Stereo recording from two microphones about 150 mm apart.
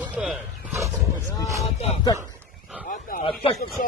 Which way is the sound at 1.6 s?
45° left (ahead or behind).